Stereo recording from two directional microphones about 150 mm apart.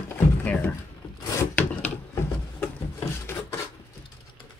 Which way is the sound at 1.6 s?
10° left (ahead or behind).